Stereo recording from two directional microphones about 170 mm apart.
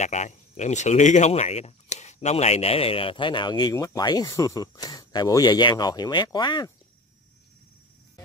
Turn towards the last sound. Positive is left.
turn(degrees=25)  # may be behind; listen again after turning